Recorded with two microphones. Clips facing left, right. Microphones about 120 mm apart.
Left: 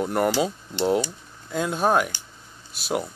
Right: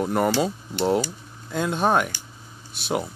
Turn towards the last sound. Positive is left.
turn(degrees=0)  # may be behind; listen again after turning